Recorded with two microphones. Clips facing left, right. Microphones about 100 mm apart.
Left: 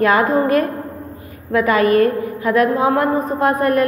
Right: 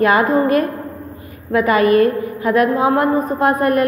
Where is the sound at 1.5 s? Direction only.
20° right (ahead or behind).